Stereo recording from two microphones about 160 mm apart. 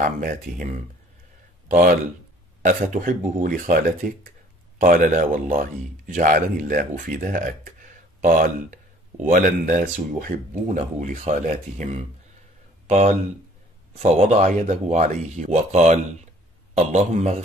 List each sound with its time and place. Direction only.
0.0 s speech: 55° right (ahead or behind)
1.7 s speech: 55° right (ahead or behind)